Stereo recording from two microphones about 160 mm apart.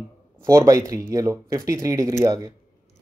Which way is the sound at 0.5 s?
20° right (ahead or behind).